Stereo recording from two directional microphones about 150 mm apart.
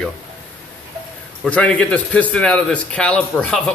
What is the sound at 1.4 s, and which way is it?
A man's voice, 10° left (ahead or behind).